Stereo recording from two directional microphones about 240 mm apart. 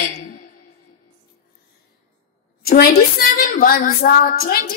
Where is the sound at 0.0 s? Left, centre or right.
Left.